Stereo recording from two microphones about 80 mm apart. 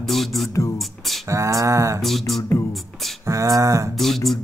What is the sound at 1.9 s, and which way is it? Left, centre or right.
Music, centre.